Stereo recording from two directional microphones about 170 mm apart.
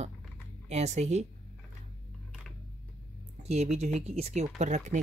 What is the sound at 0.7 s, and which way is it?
Speech, 40° right (ahead or behind).